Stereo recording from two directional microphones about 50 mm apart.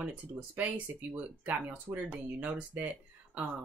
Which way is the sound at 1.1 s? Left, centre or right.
Right.